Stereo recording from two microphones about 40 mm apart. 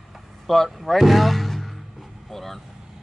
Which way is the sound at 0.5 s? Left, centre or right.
Centre.